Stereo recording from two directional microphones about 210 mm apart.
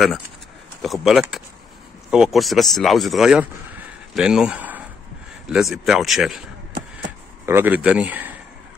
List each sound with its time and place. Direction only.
0.8 s speech: centre (ahead or behind)
7.4 s speech: 10° right (ahead or behind)